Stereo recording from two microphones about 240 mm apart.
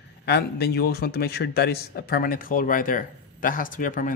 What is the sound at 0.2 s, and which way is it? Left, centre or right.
A man's voice, left.